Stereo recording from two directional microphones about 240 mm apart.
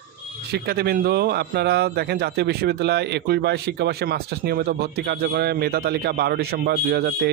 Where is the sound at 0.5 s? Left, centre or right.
Right.